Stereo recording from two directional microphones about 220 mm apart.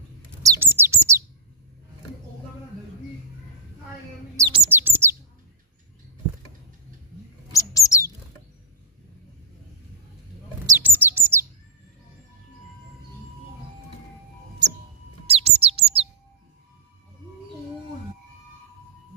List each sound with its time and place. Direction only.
0.4 s bird: 10° right (ahead or behind)
4.4 s chirp: 10° right (ahead or behind)
7.5 s bird: 15° left (ahead or behind)
10.8 s bird: 10° right (ahead or behind)
15.2 s bird: 25° right (ahead or behind)